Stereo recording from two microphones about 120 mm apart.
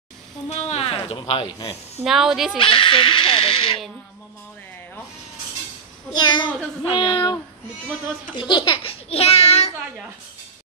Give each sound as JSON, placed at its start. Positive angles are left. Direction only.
{"t": 0.5, "sound": "speech", "side_deg": 60}
{"t": 2.0, "sound": "speech", "side_deg": -5}
{"t": 2.6, "sound": "speech", "side_deg": 50}
{"t": 6.1, "sound": "a child's voice", "side_deg": 40}
{"t": 7.0, "sound": "speech", "side_deg": 50}
{"t": 8.4, "sound": "a child's voice", "side_deg": 40}